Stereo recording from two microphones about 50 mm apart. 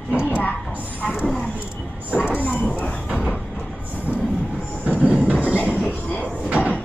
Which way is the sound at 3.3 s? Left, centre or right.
Left.